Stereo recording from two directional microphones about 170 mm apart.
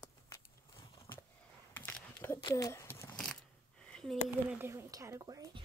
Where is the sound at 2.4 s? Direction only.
25° left (ahead or behind).